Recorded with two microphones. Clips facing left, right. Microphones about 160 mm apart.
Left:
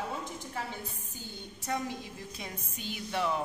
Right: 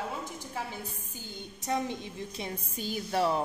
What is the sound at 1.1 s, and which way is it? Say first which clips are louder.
A woman's voice: right 1 dB; 20° right (ahead or behind).